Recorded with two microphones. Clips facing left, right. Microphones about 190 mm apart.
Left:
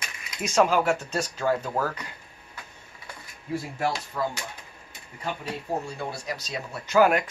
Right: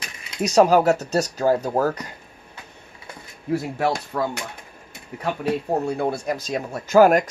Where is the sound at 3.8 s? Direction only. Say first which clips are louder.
Right 5 dB; 65° right (ahead or behind).